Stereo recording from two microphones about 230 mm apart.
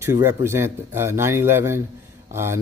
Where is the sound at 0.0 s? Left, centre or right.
Centre.